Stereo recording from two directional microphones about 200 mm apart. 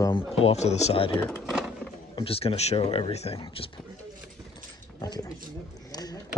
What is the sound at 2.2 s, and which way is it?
Speech, 30° left (ahead or behind).